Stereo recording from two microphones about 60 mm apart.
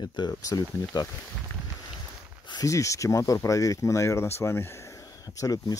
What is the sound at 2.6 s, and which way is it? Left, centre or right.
Speech, left.